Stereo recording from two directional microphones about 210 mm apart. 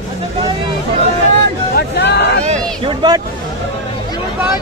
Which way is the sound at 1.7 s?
55° left (ahead or behind).